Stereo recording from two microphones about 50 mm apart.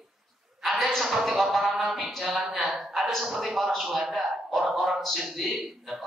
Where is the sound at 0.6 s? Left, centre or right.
Centre.